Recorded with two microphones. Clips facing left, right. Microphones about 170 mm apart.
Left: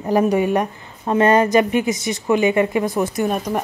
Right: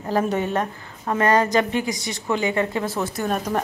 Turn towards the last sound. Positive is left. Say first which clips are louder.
# left 5 dB
turn(degrees=15)  # may be behind; listen again after turning